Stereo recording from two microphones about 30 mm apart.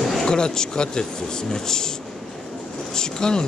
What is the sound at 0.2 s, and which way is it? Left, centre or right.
Speech, left.